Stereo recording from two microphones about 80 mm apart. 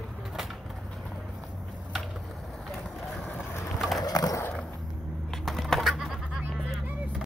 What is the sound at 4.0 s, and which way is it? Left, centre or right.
Wood, left.